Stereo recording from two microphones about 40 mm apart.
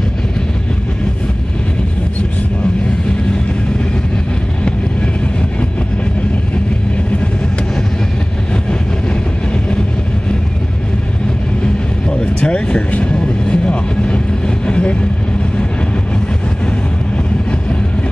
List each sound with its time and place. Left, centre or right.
11.6 s vehicle: left